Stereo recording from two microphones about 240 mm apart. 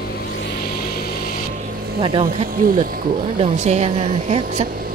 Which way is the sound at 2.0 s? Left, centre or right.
Right.